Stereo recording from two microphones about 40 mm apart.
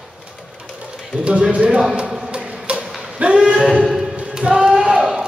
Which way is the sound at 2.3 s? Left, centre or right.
Right.